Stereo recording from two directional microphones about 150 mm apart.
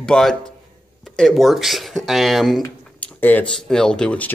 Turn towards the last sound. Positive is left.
turn(degrees=10)  # may be behind; listen again after turning